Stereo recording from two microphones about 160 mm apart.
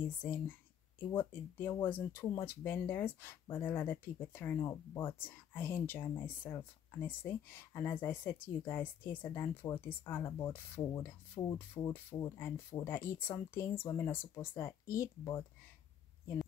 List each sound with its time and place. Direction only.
0.2 s speech: 15° left (ahead or behind)